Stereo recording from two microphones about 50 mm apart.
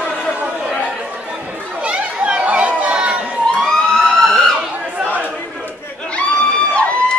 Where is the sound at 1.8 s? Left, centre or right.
Right.